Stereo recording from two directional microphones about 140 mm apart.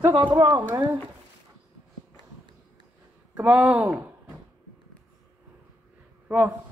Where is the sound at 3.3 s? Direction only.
10° right (ahead or behind).